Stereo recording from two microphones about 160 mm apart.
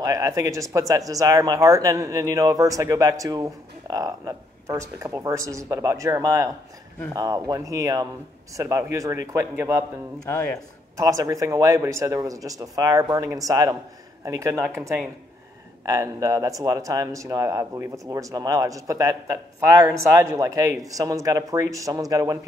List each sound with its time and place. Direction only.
0.0 s speech: 20° right (ahead or behind)
11.0 s speech: 20° right (ahead or behind)